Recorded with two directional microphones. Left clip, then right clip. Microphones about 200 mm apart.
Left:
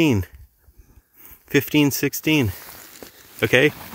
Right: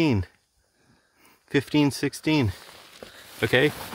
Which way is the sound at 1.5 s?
10° left (ahead or behind).